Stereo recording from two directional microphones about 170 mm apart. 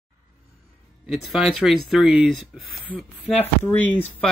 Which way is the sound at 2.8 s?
10° left (ahead or behind).